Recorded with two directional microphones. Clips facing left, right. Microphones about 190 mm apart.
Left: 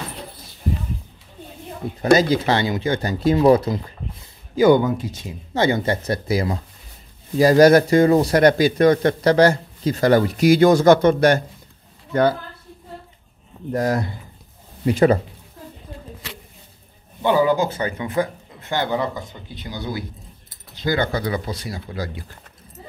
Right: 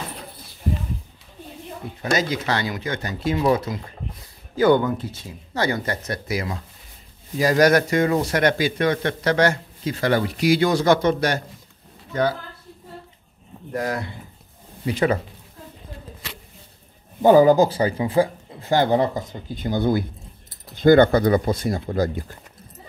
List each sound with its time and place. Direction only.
1.8 s speech: 40° left (ahead or behind)
4.6 s speech: 10° left (ahead or behind); by 12.4 s 60° left (ahead or behind)
13.7 s speech: 40° left (ahead or behind)
17.2 s speech: 40° right (ahead or behind)